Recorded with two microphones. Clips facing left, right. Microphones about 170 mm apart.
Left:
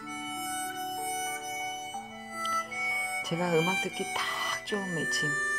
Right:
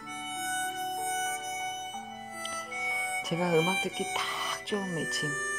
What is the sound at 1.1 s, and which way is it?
Music, 10° left (ahead or behind).